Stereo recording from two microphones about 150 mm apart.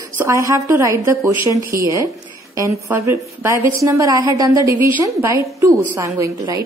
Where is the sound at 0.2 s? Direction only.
20° right (ahead or behind).